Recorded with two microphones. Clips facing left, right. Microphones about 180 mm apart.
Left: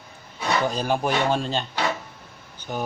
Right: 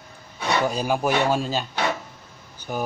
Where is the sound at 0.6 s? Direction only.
10° right (ahead or behind).